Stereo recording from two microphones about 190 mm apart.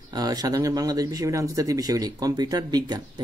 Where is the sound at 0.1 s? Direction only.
20° right (ahead or behind).